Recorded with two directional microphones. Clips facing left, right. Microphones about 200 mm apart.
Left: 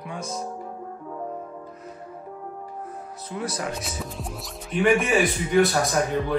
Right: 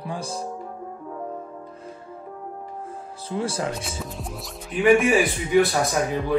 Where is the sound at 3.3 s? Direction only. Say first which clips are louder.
Right 4 dB; 30° right (ahead or behind).